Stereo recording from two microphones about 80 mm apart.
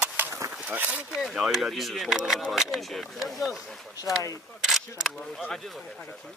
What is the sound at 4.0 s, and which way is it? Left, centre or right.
Speech, left.